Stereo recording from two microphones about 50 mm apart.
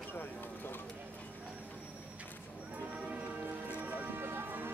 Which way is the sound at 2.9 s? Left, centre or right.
Right.